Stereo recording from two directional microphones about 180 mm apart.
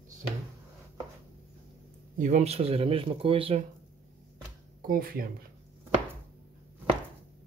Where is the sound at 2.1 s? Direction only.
40° right (ahead or behind).